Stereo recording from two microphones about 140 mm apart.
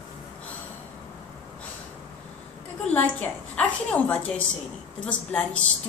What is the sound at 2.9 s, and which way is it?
A woman's voice, 10° left (ahead or behind).